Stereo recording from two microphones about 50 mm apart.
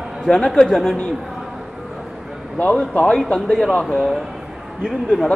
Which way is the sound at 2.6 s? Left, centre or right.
Left.